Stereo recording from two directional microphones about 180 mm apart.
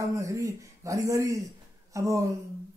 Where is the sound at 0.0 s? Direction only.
15° right (ahead or behind).